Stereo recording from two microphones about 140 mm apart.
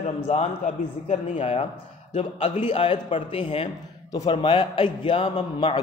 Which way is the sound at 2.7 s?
45° left (ahead or behind).